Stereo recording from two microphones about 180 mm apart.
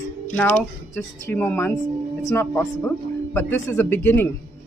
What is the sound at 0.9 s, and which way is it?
Speech, 10° left (ahead or behind).